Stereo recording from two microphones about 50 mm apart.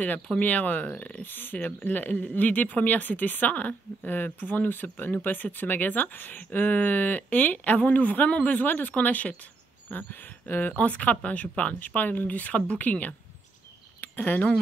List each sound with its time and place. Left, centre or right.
0.4 s speech: left